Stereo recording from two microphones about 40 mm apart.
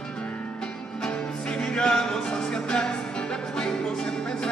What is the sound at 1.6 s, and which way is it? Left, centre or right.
Music, centre.